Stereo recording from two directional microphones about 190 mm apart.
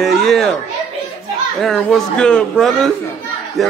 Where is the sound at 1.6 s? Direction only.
Centre (ahead or behind).